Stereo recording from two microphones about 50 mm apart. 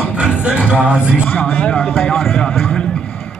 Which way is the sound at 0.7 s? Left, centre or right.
Right.